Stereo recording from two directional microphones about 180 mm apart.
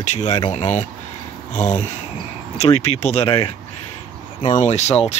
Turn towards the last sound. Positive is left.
turn(degrees=35)  # may be behind; listen again after turning